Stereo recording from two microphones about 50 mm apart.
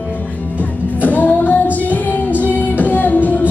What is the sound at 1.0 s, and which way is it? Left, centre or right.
Music, left.